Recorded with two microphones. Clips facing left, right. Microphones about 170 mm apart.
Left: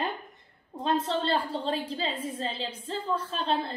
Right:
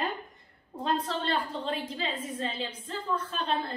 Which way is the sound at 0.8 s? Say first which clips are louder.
Left 3 dB; 25° left (ahead or behind).